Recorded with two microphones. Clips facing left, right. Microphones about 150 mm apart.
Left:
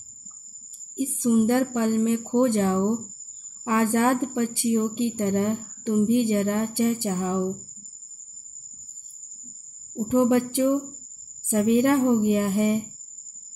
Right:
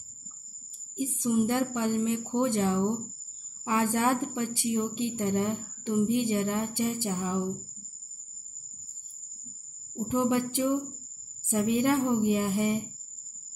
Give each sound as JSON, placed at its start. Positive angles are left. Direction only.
{"t": 0.9, "sound": "a woman's voice", "side_deg": 55}
{"t": 10.0, "sound": "a woman's voice", "side_deg": 55}